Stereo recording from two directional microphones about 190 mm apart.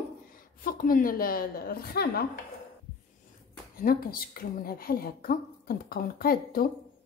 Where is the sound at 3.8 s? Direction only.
50° left (ahead or behind).